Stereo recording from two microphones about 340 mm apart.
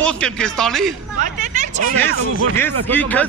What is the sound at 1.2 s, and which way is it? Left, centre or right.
Speech, right.